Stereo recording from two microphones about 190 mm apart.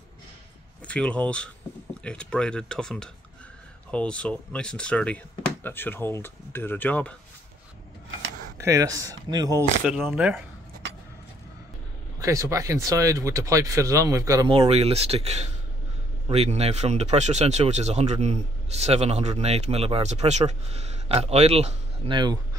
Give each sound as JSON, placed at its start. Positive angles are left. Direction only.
{"t": 0.8, "sound": "speech", "side_deg": 5}
{"t": 8.5, "sound": "speech", "side_deg": -15}
{"t": 9.8, "sound": "speech", "side_deg": 0}
{"t": 12.2, "sound": "speech", "side_deg": -15}
{"t": 14.6, "sound": "speech", "side_deg": -35}